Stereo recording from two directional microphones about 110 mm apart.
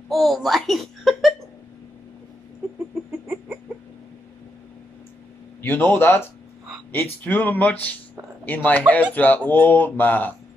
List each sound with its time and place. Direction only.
0.1 s speech: centre (ahead or behind)
5.6 s a man's voice: 20° left (ahead or behind)